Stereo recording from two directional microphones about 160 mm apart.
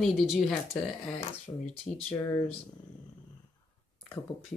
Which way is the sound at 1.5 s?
20° left (ahead or behind).